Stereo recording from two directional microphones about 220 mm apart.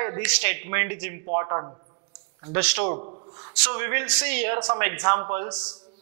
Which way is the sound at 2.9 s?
30° right (ahead or behind).